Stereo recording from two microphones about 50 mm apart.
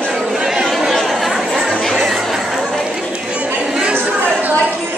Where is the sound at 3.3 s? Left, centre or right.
Right.